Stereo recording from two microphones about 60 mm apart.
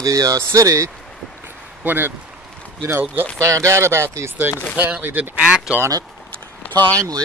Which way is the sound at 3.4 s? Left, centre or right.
Right.